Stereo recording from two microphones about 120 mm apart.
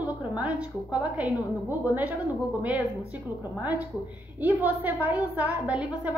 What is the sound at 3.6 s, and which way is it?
A woman's voice, 15° right (ahead or behind).